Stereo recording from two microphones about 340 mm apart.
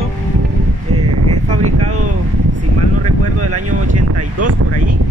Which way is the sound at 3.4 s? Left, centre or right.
Right.